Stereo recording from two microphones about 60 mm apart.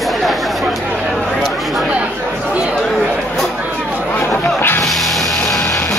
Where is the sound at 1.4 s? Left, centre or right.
Centre.